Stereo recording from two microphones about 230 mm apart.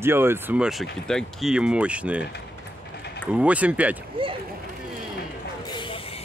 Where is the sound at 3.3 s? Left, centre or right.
Centre.